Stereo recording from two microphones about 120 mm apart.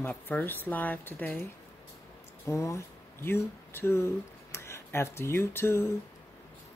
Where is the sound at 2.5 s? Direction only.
25° left (ahead or behind).